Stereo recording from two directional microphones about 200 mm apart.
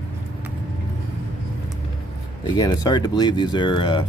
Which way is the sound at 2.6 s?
20° left (ahead or behind).